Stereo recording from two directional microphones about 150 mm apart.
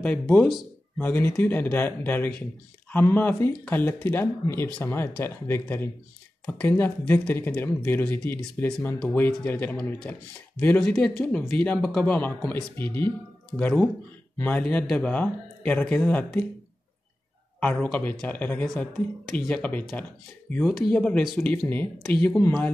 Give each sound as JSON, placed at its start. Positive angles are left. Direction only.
{"t": 0.0, "sound": "speech", "side_deg": 10}
{"t": 17.6, "sound": "a man's voice", "side_deg": 10}